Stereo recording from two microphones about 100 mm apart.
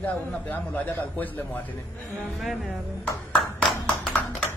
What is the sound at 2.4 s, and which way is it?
Music, centre (ahead or behind).